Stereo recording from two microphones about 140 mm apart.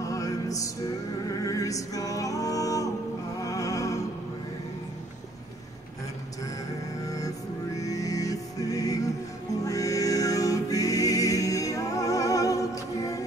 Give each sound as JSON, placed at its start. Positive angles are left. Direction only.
{"t": 0.0, "sound": "music", "side_deg": 25}
{"t": 7.1, "sound": "music", "side_deg": 25}